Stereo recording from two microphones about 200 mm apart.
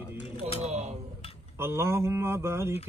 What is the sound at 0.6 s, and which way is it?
Speech, 35° right (ahead or behind).